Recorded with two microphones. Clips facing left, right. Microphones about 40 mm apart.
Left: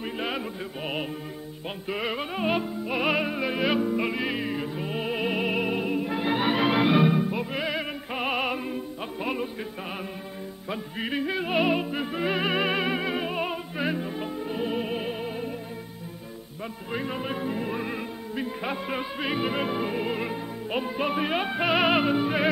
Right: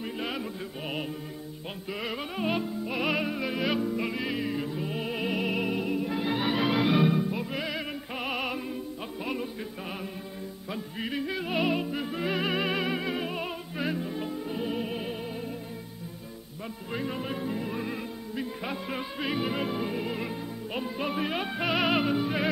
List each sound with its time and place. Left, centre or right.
0.0 s music: centre
10.7 s music: centre
16.9 s music: centre